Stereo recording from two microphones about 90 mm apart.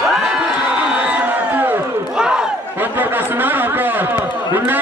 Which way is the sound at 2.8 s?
20° right (ahead or behind).